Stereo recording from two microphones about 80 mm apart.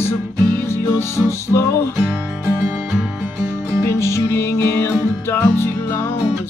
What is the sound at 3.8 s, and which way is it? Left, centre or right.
Music, left.